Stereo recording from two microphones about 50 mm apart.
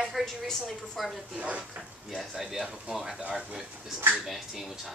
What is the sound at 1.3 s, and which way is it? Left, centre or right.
Speech, right.